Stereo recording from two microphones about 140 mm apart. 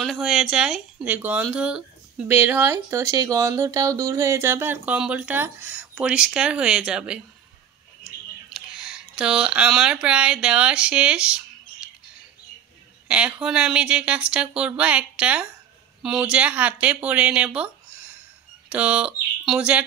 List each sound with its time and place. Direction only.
0.0 s speech: centre (ahead or behind)
8.5 s speech: 5° right (ahead or behind)
13.1 s speech: 5° right (ahead or behind)
18.7 s speech: 10° right (ahead or behind)